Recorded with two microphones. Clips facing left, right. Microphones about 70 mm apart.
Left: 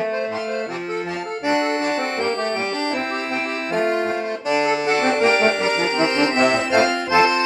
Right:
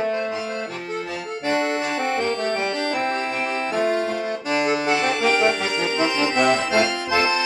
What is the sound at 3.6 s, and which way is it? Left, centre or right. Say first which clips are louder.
Accordion: left 2 dB; left.